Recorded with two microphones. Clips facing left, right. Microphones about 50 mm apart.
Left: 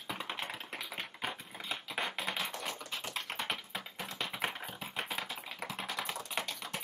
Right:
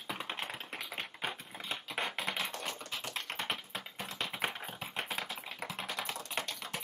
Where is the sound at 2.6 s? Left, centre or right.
Centre.